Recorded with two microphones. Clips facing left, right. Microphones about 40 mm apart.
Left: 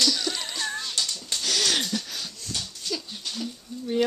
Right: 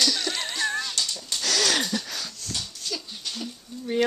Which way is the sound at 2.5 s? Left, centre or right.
Centre.